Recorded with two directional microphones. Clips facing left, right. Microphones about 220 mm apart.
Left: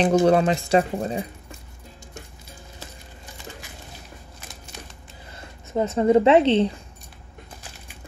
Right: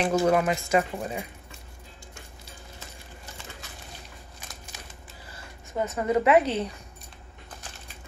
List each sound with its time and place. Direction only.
0.0 s speech: 30° left (ahead or behind)
5.3 s speech: 25° left (ahead or behind)